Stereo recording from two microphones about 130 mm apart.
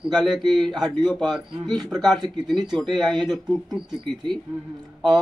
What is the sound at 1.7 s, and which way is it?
Speech, 35° right (ahead or behind).